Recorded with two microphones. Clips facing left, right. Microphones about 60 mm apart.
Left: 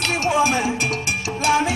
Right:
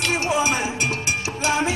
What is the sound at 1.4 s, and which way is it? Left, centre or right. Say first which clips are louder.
Music: left 4 dB; right.